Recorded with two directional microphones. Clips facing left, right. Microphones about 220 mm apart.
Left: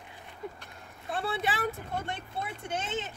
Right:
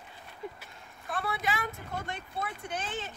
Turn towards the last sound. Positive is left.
turn(degrees=25)  # may be behind; listen again after turning